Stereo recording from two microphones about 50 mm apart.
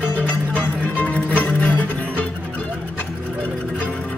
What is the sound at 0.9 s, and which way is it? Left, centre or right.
Music, left.